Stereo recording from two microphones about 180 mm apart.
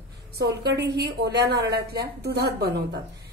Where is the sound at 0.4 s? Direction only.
70° right (ahead or behind).